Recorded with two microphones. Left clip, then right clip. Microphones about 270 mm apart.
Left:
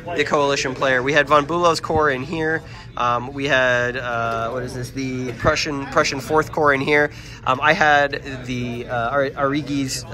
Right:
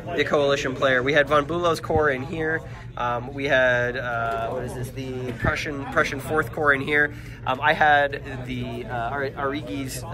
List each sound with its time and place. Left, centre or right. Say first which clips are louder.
0.1 s speech: left 2 dB; centre
5.5 s speech: left 7 dB; centre
8.9 s a man's voice: left 7 dB; left